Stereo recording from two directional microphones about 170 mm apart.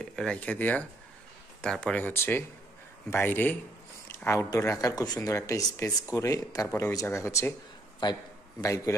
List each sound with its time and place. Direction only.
0.0 s a man's voice: 5° left (ahead or behind)